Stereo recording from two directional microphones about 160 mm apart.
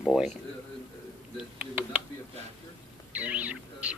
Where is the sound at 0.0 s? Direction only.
Centre (ahead or behind).